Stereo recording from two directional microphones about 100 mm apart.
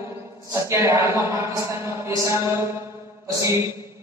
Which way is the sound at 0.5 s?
30° right (ahead or behind).